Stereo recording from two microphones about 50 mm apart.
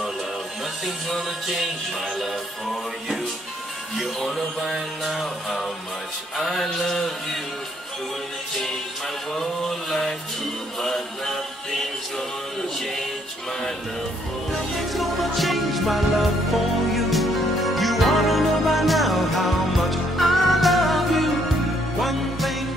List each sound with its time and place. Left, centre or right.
0.8 s music: centre
9.4 s music: centre
14.8 s music: centre